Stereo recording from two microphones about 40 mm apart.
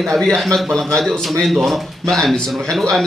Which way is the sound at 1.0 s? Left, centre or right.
Centre.